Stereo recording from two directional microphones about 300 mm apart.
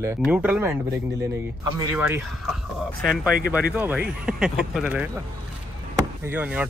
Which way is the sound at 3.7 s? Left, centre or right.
Centre.